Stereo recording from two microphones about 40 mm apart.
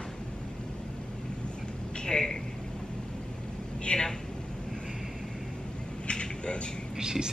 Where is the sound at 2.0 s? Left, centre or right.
Centre.